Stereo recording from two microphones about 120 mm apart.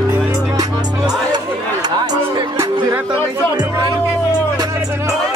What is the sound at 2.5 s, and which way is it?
Music, 20° right (ahead or behind).